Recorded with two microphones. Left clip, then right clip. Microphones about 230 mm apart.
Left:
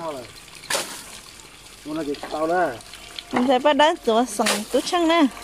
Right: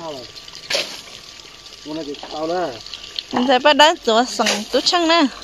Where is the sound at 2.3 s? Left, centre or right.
Centre.